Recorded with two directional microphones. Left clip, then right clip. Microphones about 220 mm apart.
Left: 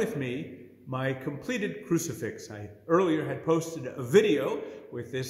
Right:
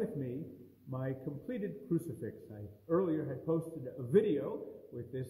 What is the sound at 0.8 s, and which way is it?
A man's voice, 15° left (ahead or behind).